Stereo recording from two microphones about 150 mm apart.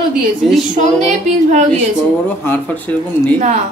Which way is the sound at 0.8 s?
50° right (ahead or behind).